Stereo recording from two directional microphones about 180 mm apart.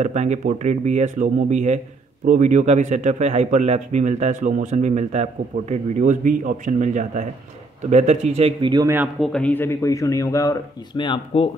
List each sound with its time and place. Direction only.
0.0 s speech: 40° right (ahead or behind)
8.9 s speech: 10° right (ahead or behind)
9.3 s speech: 10° left (ahead or behind); by 11.4 s 25° left (ahead or behind)